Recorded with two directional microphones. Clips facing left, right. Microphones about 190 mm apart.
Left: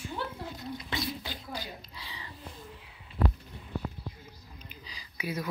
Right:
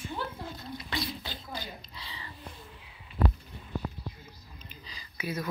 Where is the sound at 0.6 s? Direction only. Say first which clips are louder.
Left 1 dB; 20° left (ahead or behind).